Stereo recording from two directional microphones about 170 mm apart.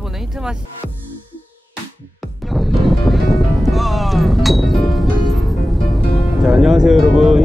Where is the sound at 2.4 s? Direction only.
Centre (ahead or behind).